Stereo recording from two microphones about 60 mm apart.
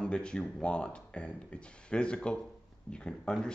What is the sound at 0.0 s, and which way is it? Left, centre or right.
Speech, centre.